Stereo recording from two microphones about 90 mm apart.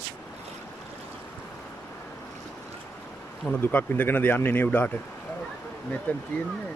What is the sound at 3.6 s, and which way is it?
Speech, 20° left (ahead or behind).